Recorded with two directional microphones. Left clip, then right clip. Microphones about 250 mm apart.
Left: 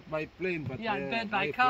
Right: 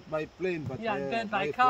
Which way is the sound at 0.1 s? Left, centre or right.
Centre.